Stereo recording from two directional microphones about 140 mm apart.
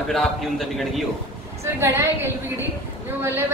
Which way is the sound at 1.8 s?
20° right (ahead or behind).